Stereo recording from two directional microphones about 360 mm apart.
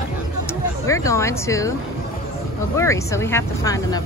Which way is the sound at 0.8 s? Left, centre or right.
Centre.